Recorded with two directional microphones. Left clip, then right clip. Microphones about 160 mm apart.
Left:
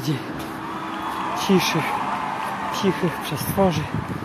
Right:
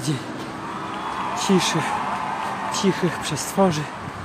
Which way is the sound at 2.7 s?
20° right (ahead or behind).